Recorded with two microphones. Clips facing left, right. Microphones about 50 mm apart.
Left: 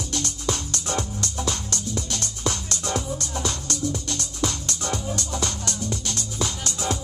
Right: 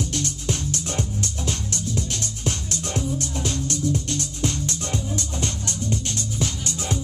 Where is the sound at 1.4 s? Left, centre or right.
Left.